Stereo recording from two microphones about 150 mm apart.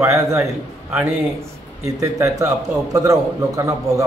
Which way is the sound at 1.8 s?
20° right (ahead or behind).